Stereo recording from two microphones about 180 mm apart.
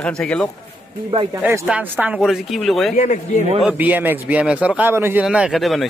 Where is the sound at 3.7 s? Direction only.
10° right (ahead or behind).